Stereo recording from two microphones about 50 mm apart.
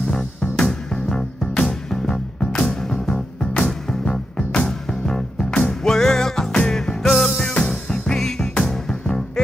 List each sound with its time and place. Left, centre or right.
0.1 s music: centre
3.5 s music: left
4.4 s music: centre
7.0 s music: centre
7.4 s music: centre